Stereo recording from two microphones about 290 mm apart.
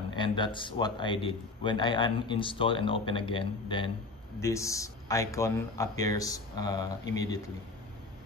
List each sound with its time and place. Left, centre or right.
0.1 s a man's voice: centre